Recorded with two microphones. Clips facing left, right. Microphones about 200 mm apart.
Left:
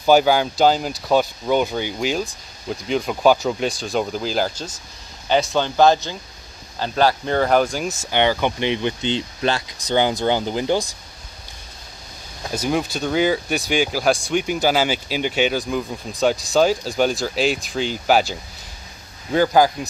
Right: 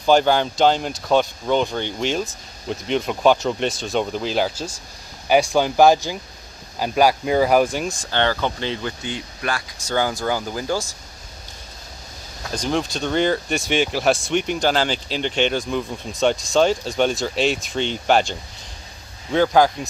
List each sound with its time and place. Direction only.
0.0 s speech: 5° left (ahead or behind)
8.0 s speech: 15° left (ahead or behind)
12.4 s speech: 10° left (ahead or behind)